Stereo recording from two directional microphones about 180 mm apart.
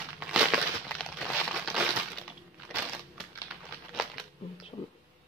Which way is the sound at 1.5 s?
Centre (ahead or behind).